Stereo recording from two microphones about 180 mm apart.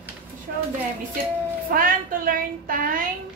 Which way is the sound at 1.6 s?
50° right (ahead or behind).